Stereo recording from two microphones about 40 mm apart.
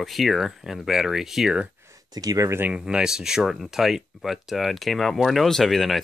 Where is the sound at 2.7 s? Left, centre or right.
Centre.